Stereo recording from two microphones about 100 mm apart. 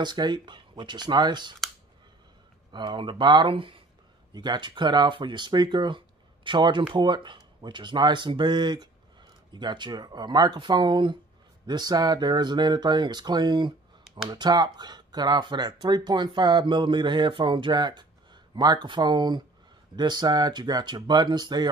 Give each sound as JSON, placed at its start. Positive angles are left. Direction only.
{"t": 0.0, "sound": "speech", "side_deg": -45}
{"t": 2.7, "sound": "speech", "side_deg": -50}
{"t": 4.3, "sound": "speech", "side_deg": -45}